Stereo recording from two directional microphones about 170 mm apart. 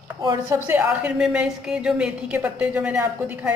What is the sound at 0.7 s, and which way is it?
A woman's voice, 10° right (ahead or behind).